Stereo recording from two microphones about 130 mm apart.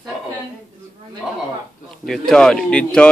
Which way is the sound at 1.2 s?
Centre (ahead or behind).